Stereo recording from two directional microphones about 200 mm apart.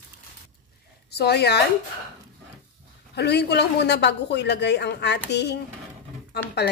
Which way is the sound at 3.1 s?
55° left (ahead or behind).